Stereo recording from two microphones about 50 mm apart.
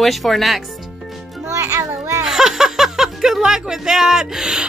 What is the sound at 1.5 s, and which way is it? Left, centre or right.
Music, right.